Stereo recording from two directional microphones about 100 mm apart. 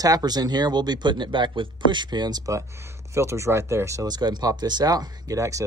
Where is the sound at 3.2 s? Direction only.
30° right (ahead or behind).